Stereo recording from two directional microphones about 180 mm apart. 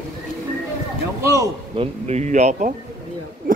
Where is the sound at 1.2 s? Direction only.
15° right (ahead or behind).